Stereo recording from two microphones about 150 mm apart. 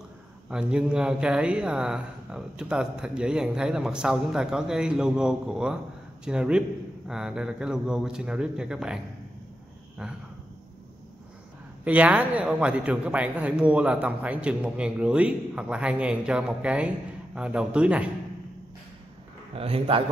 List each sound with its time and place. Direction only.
0.5 s speech: 5° right (ahead or behind)
11.8 s a man's voice: 10° right (ahead or behind)
19.5 s a man's voice: 40° right (ahead or behind)